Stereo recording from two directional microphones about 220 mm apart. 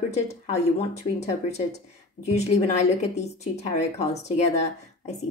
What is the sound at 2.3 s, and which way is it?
A woman's voice, 30° left (ahead or behind).